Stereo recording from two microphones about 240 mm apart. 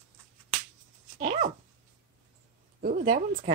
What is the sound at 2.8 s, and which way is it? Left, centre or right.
Speech, right.